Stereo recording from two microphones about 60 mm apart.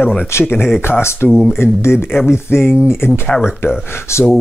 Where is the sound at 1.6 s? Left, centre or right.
Left.